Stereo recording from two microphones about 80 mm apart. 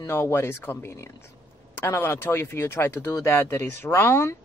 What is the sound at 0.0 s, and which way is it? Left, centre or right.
A man's voice, left.